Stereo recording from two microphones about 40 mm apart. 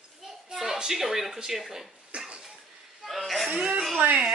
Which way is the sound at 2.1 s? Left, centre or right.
Right.